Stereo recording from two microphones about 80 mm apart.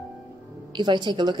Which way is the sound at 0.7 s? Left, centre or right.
Right.